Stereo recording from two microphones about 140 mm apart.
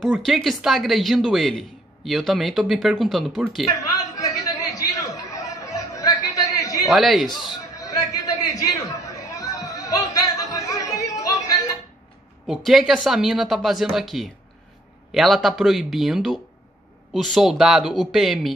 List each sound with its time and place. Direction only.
0.0 s speech: centre (ahead or behind)
3.9 s chatter: 25° left (ahead or behind)
6.9 s speech: centre (ahead or behind)
7.4 s chatter: 25° left (ahead or behind)
12.4 s speech: centre (ahead or behind)